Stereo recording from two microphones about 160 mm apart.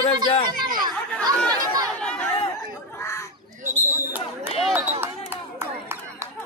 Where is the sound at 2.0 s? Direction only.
5° left (ahead or behind).